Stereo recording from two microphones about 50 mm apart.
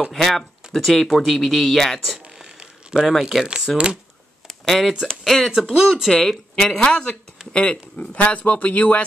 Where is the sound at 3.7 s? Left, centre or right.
Centre.